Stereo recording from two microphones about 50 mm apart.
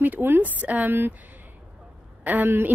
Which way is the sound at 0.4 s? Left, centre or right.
Right.